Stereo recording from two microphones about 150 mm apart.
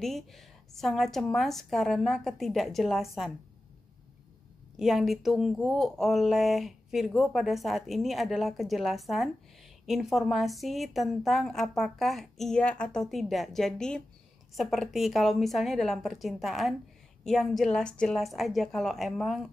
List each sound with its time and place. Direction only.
0.0 s speech: centre (ahead or behind)
4.7 s speech: centre (ahead or behind)